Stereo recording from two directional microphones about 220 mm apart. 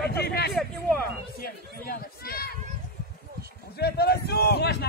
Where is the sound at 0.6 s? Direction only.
5° left (ahead or behind).